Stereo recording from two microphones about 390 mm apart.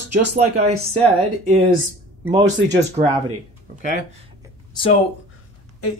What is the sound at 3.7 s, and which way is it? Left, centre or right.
Speech, centre.